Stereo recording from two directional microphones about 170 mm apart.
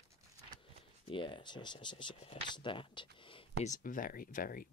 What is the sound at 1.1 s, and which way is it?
Speech, 30° left (ahead or behind).